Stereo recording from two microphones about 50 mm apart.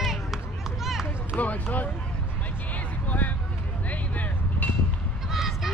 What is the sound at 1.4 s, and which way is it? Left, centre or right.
Speech, left.